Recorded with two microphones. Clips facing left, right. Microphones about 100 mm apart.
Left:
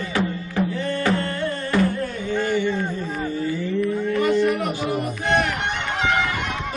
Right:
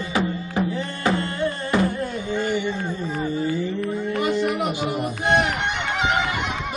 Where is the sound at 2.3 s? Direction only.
40° left (ahead or behind).